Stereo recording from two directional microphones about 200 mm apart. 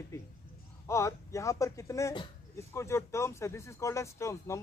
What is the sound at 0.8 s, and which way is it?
Speech, 15° left (ahead or behind).